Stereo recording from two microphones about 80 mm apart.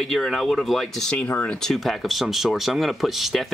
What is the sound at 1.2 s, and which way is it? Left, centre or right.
Speech, left.